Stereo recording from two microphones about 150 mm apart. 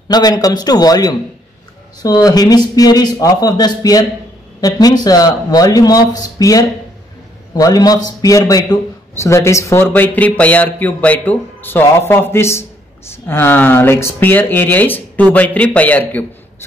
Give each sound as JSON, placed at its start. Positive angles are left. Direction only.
{"t": 0.1, "sound": "speech", "side_deg": 25}